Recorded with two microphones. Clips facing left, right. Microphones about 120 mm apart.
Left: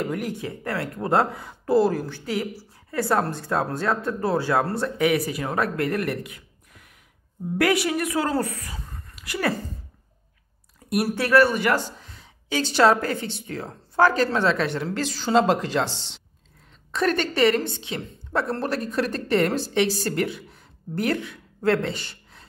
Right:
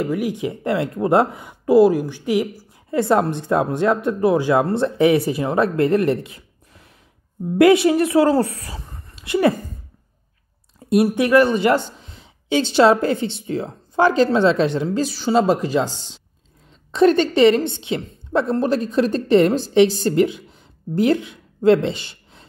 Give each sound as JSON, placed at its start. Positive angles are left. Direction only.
{"t": 0.0, "sound": "speech", "side_deg": -5}
{"t": 0.3, "sound": "a woman's voice", "side_deg": -20}
{"t": 10.9, "sound": "a woman's voice", "side_deg": -20}
{"t": 15.6, "sound": "speech", "side_deg": -15}
{"t": 16.9, "sound": "a woman's voice", "side_deg": -25}